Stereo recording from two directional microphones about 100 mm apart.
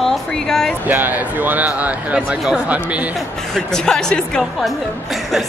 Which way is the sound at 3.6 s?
5° left (ahead or behind).